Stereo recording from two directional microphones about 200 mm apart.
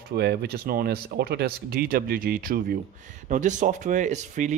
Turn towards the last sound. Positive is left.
turn(degrees=-35)  # may be behind; listen again after turning